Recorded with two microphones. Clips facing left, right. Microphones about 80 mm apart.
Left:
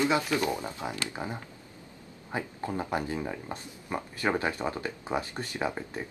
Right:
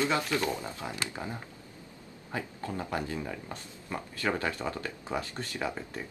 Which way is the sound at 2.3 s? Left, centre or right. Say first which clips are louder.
Left 3 dB; left.